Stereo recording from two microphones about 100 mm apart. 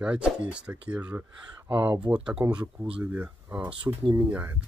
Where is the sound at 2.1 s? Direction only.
10° right (ahead or behind).